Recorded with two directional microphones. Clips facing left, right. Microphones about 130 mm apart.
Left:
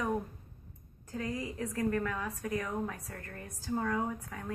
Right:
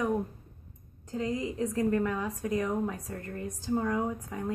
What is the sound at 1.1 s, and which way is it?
A woman's voice, 20° right (ahead or behind).